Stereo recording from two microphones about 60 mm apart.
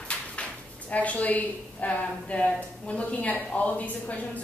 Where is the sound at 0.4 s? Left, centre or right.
Left.